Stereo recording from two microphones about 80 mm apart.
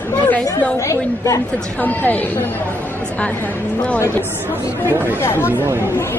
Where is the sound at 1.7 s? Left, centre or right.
Left.